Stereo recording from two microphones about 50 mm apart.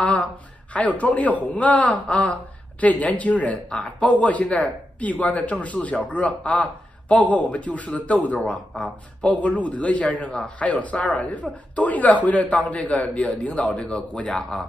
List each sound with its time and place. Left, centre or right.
0.0 s a sound: left
0.7 s a man's voice: left
14.2 s a man's voice: centre